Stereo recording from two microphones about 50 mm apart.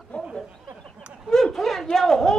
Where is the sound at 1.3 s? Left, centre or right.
Centre.